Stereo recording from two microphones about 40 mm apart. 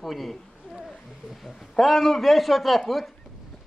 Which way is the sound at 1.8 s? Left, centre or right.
Centre.